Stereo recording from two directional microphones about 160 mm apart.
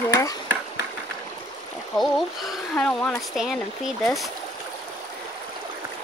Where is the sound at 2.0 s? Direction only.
Centre (ahead or behind).